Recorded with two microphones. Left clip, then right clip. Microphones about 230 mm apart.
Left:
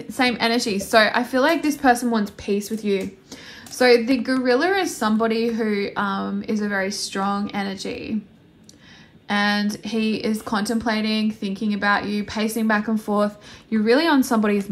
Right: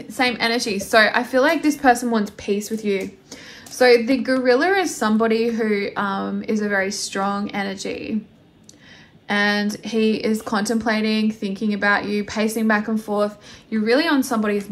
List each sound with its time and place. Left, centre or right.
0.1 s speech: left
9.3 s speech: left